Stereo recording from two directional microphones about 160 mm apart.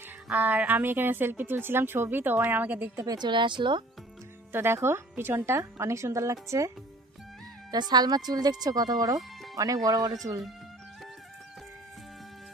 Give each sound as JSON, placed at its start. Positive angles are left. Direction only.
{"t": 0.3, "sound": "a woman's voice", "side_deg": -5}
{"t": 3.1, "sound": "speech", "side_deg": -30}
{"t": 4.5, "sound": "a woman's voice", "side_deg": -15}
{"t": 7.9, "sound": "speech", "side_deg": -25}